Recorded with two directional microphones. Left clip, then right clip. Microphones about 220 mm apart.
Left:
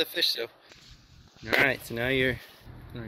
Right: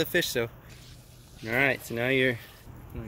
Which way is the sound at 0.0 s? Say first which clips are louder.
Even; 10° left (ahead or behind).